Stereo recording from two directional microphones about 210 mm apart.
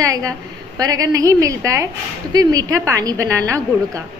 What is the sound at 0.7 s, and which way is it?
A woman's voice, 15° right (ahead or behind).